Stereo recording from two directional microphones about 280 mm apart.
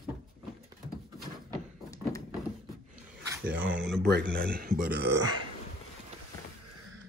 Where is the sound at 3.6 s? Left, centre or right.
Right.